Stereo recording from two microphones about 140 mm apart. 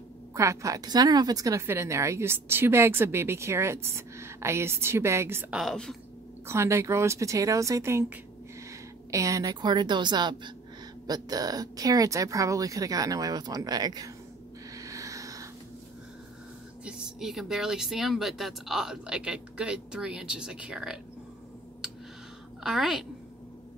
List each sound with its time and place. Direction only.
0.3 s a woman's voice: 20° right (ahead or behind)
5.5 s speech: centre (ahead or behind)
6.4 s a woman's voice: 20° right (ahead or behind)
14.8 s a sound: 25° right (ahead or behind)
16.8 s speech: 5° right (ahead or behind)
22.6 s a woman's voice: centre (ahead or behind)